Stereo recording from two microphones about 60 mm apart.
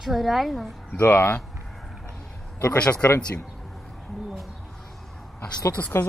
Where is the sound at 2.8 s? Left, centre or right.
Left.